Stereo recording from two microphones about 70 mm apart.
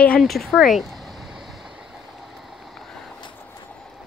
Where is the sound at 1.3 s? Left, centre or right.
Centre.